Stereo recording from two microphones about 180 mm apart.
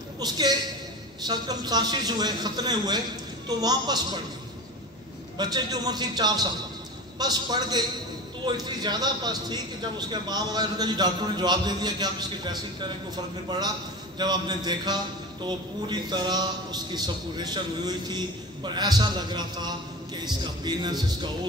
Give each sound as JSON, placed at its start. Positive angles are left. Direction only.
{"t": 0.2, "sound": "a man's voice", "side_deg": -20}
{"t": 5.4, "sound": "a man's voice", "side_deg": -20}